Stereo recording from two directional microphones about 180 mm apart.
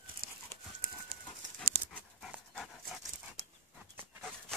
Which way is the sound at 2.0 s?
Centre (ahead or behind).